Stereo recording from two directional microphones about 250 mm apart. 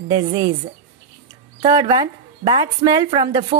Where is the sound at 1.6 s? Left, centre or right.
Centre.